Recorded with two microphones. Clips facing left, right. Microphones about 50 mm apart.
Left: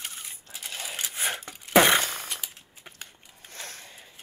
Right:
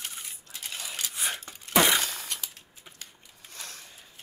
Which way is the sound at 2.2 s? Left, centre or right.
Centre.